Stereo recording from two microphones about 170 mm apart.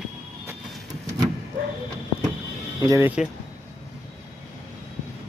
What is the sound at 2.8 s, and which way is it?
Speech, 20° right (ahead or behind).